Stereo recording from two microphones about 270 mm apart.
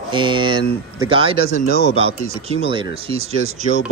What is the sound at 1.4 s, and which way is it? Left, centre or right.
Speech, left.